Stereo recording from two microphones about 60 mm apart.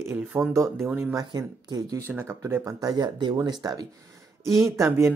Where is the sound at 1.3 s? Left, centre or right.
Right.